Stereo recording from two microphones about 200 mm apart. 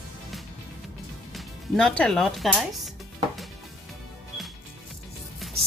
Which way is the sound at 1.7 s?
5° left (ahead or behind).